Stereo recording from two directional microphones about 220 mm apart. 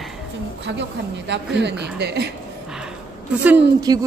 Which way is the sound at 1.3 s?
50° right (ahead or behind).